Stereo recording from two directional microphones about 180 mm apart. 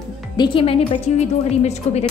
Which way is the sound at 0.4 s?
30° left (ahead or behind).